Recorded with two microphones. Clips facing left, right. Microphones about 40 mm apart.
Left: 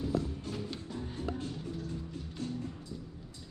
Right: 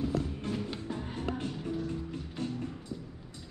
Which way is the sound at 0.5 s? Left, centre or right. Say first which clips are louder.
Right 4 dB; right.